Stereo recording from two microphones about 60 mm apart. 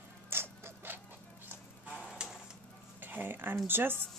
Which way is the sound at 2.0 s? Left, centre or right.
Centre.